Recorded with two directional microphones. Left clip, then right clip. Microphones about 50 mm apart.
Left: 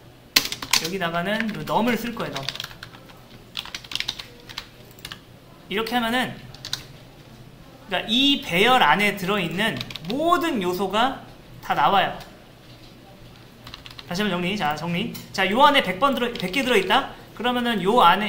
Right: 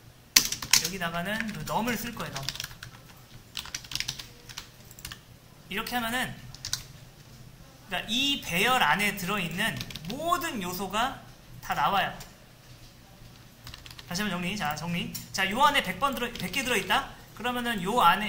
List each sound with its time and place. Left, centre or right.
0.7 s speech: right
1.4 s speech: centre
1.7 s speech: right
2.0 s speech: centre
2.5 s typing: centre
3.7 s typing: right
5.7 s speech: right
6.6 s typing: centre
7.9 s speech: right
9.8 s speech: right
10.1 s speech: right
13.7 s typing: right
14.0 s speech: right